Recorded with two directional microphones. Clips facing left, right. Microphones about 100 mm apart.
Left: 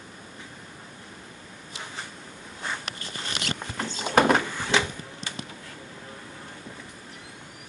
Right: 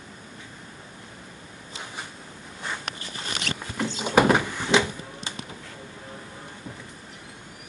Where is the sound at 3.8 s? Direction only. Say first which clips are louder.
Right 1 dB; 15° right (ahead or behind).